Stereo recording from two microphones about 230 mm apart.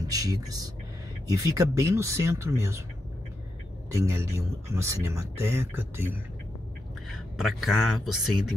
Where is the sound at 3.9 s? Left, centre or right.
Centre.